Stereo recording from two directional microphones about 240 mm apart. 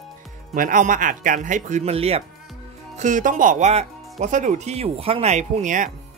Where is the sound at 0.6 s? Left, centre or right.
Right.